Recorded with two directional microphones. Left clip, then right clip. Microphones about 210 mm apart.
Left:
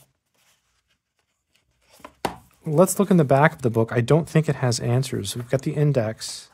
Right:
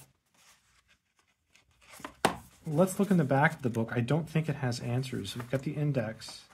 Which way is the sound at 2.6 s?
45° left (ahead or behind).